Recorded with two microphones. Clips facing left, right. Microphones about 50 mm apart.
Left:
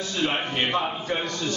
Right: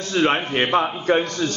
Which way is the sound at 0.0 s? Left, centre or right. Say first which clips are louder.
Right 6 dB; right.